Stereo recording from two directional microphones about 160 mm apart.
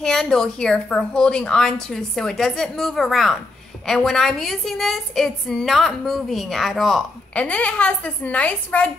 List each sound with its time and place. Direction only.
0.0 s a woman's voice: 5° left (ahead or behind)